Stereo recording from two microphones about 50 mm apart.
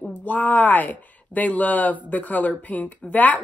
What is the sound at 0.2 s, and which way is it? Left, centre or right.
A woman's voice, left.